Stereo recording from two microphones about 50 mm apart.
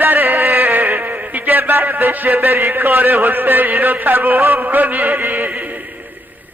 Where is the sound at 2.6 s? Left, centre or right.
Right.